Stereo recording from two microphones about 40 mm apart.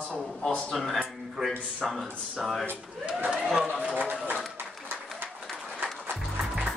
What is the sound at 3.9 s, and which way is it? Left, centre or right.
Run, right.